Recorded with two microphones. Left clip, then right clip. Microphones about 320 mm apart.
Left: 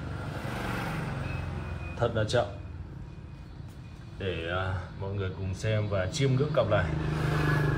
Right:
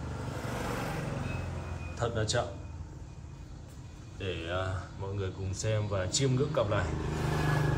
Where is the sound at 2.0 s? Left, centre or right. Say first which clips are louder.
Left 4 dB; centre.